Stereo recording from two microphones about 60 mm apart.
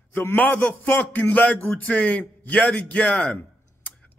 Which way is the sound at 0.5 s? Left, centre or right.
Left.